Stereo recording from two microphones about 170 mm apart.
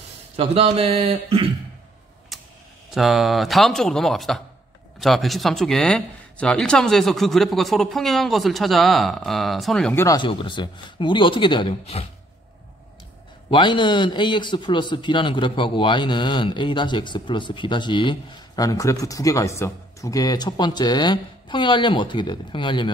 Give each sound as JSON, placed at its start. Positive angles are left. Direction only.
{"t": 0.4, "sound": "speech", "side_deg": -35}
{"t": 2.9, "sound": "speech", "side_deg": 0}
{"t": 10.0, "sound": "a man's voice", "side_deg": 25}
{"t": 13.5, "sound": "a man's voice", "side_deg": 25}